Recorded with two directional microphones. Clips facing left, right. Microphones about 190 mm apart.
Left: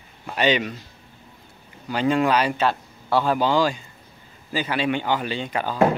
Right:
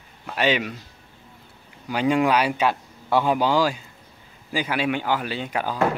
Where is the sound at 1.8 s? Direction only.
10° right (ahead or behind).